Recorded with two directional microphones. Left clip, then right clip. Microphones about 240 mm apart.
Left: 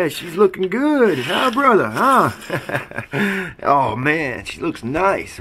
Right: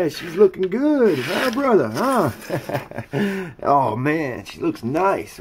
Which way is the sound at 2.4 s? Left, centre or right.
Centre.